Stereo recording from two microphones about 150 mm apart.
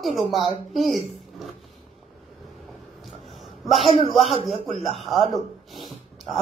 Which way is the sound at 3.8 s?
45° left (ahead or behind).